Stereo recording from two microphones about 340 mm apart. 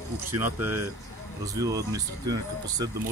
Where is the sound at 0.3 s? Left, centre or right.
Centre.